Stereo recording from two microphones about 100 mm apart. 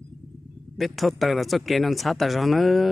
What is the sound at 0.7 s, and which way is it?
A man's voice, centre (ahead or behind).